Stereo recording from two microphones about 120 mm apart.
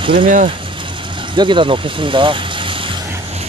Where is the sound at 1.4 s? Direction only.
40° right (ahead or behind).